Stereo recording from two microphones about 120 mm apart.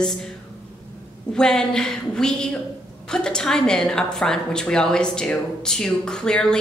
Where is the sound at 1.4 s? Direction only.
5° left (ahead or behind).